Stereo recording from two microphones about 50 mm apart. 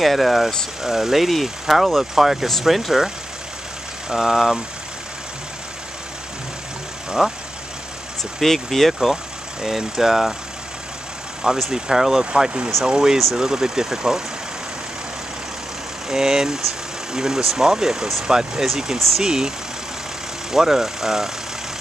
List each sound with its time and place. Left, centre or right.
0.0 s speech: centre
4.1 s speech: centre
7.2 s speech: centre
9.1 s speech: centre
11.4 s speech: centre
12.3 s speech: right
16.1 s speech: centre
18.9 s speech: centre
19.2 s speech: centre
20.5 s speech: centre